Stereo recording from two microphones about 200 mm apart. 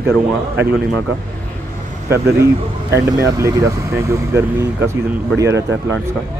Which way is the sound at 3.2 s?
15° right (ahead or behind).